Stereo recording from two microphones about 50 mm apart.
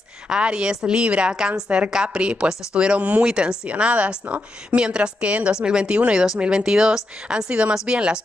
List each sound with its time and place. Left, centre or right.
0.3 s a woman's voice: centre